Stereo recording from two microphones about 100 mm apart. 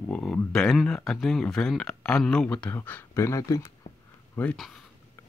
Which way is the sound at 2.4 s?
15° left (ahead or behind).